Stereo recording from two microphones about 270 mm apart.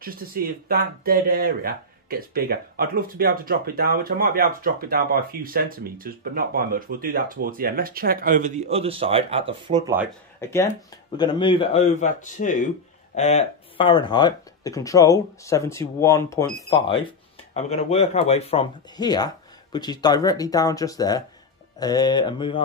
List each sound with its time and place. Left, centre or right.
0.0 s speech: right; by 10.0 s centre
10.4 s speech: centre
17.6 s speech: left